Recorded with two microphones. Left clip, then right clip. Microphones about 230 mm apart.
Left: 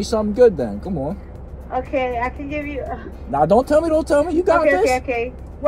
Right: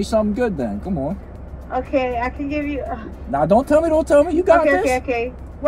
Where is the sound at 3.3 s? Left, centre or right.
Left.